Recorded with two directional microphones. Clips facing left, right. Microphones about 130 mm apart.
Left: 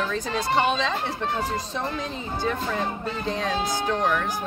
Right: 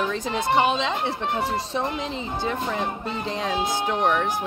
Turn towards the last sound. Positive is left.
turn(degrees=-20)  # may be behind; listen again after turning